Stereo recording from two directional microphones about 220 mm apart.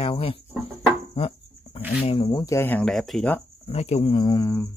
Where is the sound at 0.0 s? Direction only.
25° left (ahead or behind).